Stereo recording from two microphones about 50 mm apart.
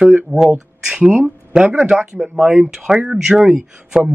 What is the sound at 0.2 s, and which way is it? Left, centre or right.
Speech, centre.